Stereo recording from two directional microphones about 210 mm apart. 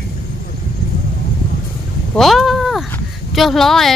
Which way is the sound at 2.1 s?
Centre (ahead or behind).